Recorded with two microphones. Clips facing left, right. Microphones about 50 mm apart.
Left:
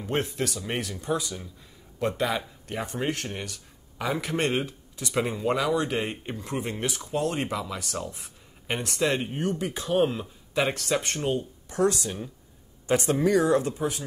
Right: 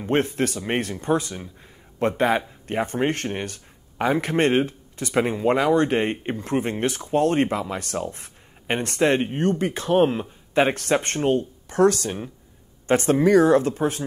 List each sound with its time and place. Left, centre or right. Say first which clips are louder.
0.0 s speech: right 6 dB; right